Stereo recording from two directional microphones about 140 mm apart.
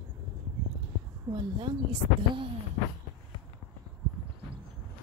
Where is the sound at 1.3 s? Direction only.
35° right (ahead or behind).